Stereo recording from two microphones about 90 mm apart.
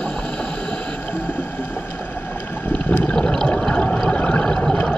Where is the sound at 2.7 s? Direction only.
20° left (ahead or behind).